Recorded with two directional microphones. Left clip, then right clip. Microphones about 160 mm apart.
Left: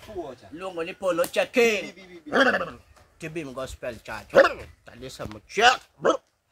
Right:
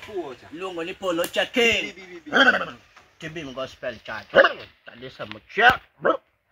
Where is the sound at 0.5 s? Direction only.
20° left (ahead or behind).